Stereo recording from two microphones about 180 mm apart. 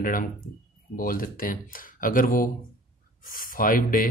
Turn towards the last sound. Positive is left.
turn(degrees=50)  # may be behind; listen again after turning